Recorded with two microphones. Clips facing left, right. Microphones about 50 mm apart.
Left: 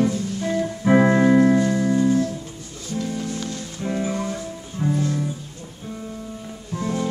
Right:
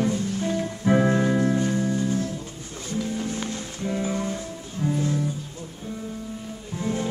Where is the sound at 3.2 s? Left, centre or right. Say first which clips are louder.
Left 1 dB; right.